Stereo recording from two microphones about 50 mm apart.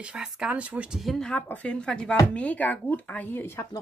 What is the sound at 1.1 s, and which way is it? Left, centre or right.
Speech, centre.